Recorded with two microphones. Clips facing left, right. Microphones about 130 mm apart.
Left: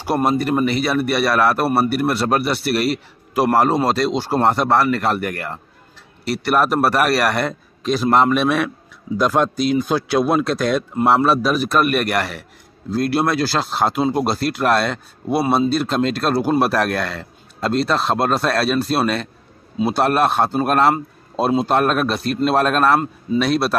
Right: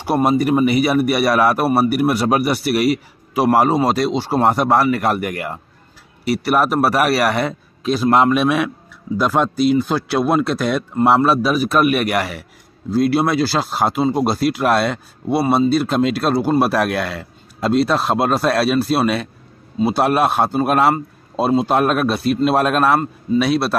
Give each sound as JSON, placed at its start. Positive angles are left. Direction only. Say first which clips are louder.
{"t": 0.1, "sound": "speech", "louder": "right 2 dB", "side_deg": -5}